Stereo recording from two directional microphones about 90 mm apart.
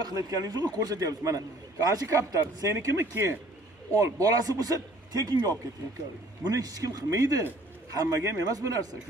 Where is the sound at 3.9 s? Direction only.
40° right (ahead or behind).